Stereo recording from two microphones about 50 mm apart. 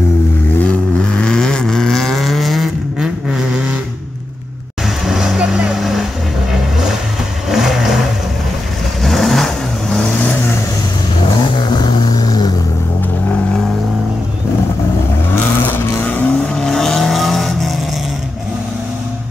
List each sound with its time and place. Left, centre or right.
0.6 s vehicle: left; by 2.7 s centre
3.0 s vehicle: centre
4.8 s vehicle: centre
5.8 s vehicle: centre
7.4 s vehicle: centre
9.0 s vehicle: centre
15.3 s vehicle: left
16.0 s vehicle: left
16.3 s vehicle: centre